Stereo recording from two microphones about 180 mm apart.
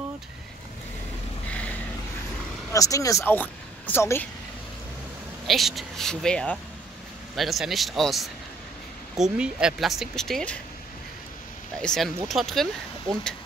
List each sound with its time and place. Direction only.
1.5 s vehicle: 5° left (ahead or behind)
2.7 s speech: 20° left (ahead or behind)
5.5 s speech: centre (ahead or behind)
11.8 s speech: 5° left (ahead or behind)